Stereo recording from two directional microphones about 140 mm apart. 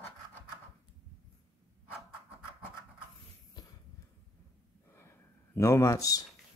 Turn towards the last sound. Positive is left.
turn(degrees=25)  # may be behind; listen again after turning